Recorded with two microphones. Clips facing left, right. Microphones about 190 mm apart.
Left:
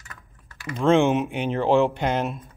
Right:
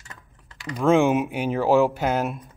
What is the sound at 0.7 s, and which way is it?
Speech, 5° right (ahead or behind).